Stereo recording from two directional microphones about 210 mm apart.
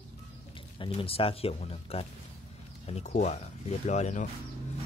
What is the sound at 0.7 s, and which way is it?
Speech, 25° left (ahead or behind).